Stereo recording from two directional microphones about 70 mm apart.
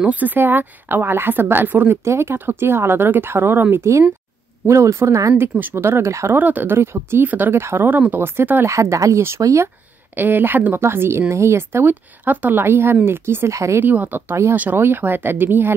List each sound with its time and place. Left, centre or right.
0.0 s a woman's voice: right
2.0 s a woman's voice: right
5.4 s a woman's voice: right
6.3 s a woman's voice: right
8.6 s speech: right
10.1 s a woman's voice: right
11.9 s a woman's voice: right
13.7 s a woman's voice: right